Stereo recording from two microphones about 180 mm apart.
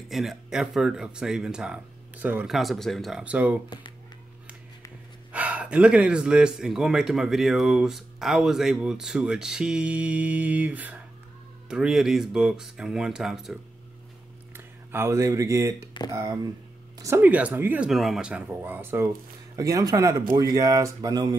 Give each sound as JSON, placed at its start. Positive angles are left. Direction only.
{"t": 0.1, "sound": "speech", "side_deg": 0}
{"t": 5.3, "sound": "speech", "side_deg": -10}
{"t": 14.9, "sound": "speech", "side_deg": -15}